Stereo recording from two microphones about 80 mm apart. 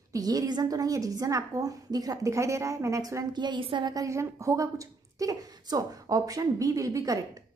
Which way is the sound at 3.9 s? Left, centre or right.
Right.